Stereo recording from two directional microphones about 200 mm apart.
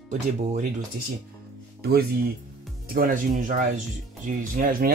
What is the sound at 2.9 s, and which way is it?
Speech, 45° right (ahead or behind).